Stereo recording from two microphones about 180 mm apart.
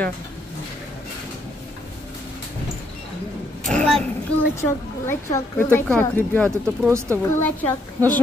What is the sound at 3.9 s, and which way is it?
Child singing, 5° left (ahead or behind).